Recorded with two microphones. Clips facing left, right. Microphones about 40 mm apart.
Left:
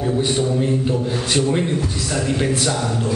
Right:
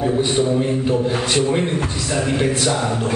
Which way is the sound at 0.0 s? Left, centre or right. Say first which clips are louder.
Right 2 dB; centre.